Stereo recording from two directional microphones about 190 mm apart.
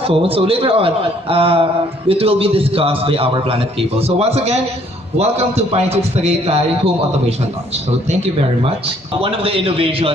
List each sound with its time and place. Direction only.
0.0 s a man's voice: 30° right (ahead or behind)
8.1 s a man's voice: 30° right (ahead or behind)